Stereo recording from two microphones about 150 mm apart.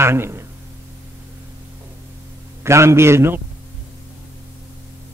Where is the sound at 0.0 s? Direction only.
15° right (ahead or behind).